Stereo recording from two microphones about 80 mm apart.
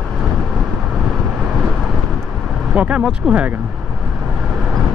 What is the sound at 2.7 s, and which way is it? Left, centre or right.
Speech, centre.